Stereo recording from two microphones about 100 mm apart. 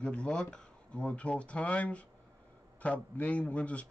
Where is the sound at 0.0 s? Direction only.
10° left (ahead or behind).